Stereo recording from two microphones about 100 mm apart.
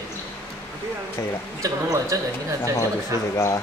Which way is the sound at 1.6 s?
35° right (ahead or behind).